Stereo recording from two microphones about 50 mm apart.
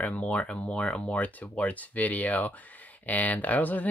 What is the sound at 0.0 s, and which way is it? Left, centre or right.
Speech, left.